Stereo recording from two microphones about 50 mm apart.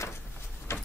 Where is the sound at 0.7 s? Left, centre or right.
Left.